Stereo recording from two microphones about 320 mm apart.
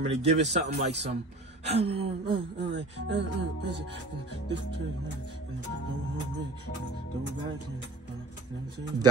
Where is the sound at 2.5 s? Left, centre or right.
Right.